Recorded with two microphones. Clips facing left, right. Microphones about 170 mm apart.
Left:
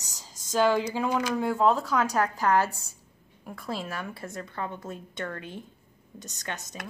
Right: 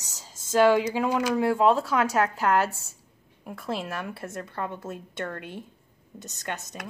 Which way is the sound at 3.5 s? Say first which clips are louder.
Right 2 dB; centre (ahead or behind).